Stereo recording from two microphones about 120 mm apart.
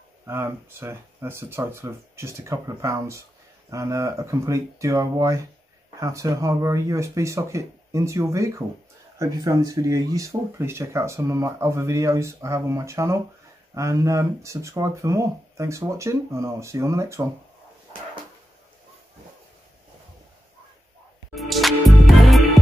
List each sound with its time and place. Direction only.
0.3 s speech: 20° right (ahead or behind)
21.4 s music: centre (ahead or behind)